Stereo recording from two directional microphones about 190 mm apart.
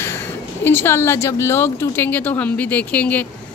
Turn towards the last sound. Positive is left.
turn(degrees=10)  # may be behind; listen again after turning